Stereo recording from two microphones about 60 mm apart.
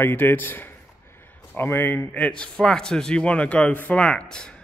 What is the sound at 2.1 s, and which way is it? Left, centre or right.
A man's voice, centre.